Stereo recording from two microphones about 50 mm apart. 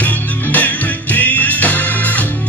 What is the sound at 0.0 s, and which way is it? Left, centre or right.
Music, left.